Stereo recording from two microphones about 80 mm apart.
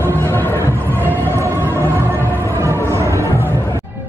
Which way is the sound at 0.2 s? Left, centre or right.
Left.